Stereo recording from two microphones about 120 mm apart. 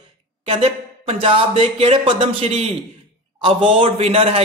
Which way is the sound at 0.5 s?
55° right (ahead or behind).